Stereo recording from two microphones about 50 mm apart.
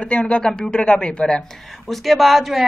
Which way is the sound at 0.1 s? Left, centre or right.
Centre.